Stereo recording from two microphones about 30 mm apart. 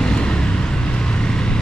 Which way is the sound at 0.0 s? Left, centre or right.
Left.